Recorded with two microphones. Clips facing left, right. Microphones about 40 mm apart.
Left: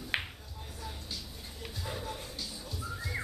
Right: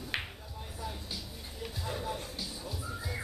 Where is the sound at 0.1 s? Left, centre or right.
Centre.